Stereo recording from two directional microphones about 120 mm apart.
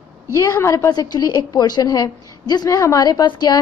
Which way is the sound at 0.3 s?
25° left (ahead or behind).